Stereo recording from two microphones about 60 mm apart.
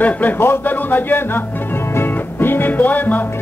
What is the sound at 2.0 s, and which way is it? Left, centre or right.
Music, left.